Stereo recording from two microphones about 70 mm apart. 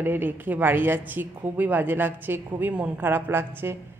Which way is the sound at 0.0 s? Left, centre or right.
Right.